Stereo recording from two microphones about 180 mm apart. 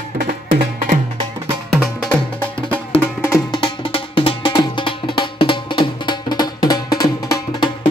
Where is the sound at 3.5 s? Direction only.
25° left (ahead or behind).